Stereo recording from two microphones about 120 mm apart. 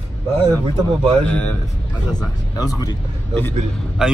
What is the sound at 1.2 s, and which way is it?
Speech, 15° left (ahead or behind).